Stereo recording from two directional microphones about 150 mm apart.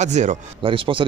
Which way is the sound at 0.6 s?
35° right (ahead or behind).